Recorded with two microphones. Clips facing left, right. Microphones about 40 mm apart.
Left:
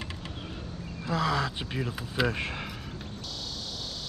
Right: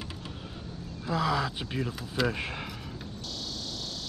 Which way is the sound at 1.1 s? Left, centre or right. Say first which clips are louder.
Even; centre.